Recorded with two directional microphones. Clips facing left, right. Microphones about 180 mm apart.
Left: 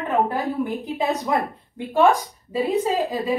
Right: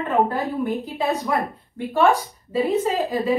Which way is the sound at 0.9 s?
20° left (ahead or behind).